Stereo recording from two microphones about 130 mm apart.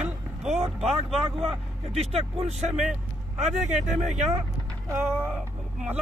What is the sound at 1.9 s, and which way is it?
Speech, 50° right (ahead or behind).